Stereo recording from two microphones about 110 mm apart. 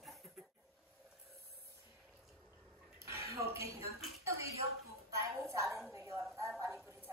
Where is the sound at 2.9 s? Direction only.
25° right (ahead or behind).